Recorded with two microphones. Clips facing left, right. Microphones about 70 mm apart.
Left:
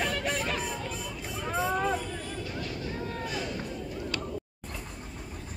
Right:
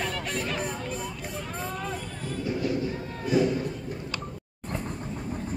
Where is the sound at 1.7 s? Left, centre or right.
Left.